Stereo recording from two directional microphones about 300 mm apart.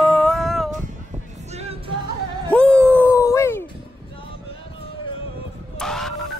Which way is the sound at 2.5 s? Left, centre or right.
Centre.